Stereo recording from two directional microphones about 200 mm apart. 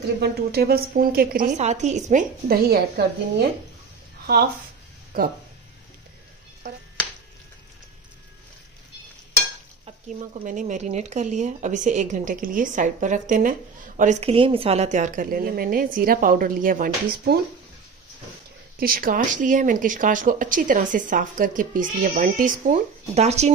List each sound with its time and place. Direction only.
0.2 s a woman's voice: 50° right (ahead or behind)
5.1 s a woman's voice: 50° right (ahead or behind)
10.0 s speech: 35° right (ahead or behind)
18.8 s speech: 45° right (ahead or behind)